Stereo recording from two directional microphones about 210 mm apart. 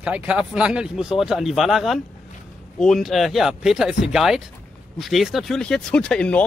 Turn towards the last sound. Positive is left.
turn(degrees=5)  # may be behind; listen again after turning